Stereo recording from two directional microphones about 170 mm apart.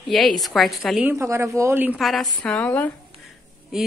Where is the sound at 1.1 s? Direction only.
15° right (ahead or behind).